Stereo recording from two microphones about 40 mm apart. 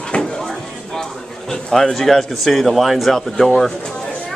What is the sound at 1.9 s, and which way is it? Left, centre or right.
Speech, centre.